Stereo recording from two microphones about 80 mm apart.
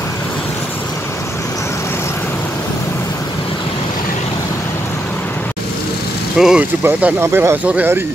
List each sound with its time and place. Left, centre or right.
6.3 s speech: centre
6.8 s speech: centre
7.2 s speech: right
7.6 s speech: centre